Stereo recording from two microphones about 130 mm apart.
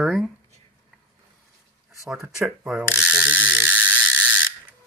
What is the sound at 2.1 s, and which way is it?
Speech, 5° right (ahead or behind).